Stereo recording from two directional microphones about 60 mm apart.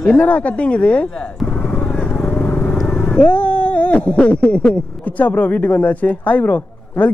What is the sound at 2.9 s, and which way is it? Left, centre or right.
Cat, left.